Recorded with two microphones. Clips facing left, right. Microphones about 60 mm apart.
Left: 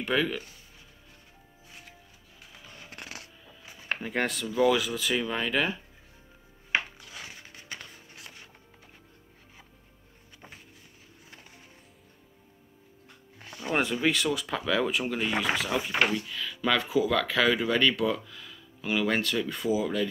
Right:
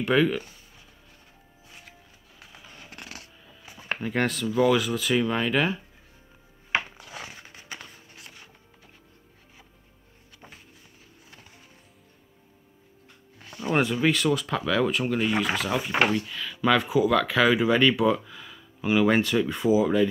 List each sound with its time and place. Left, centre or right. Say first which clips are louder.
0.0 s speech: right 5 dB; centre
3.4 s speech: right 2 dB; centre
7.0 s a sound: right 4 dB; right
13.7 s speech: right 3 dB; centre
16.3 s speech: right 4 dB; centre